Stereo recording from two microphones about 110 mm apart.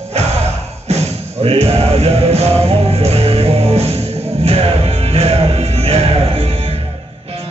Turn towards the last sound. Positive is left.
turn(degrees=-60)  # may be behind; listen again after turning